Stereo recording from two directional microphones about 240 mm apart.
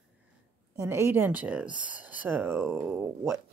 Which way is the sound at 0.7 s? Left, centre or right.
Centre.